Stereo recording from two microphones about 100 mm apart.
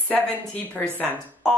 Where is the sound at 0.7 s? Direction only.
20° left (ahead or behind).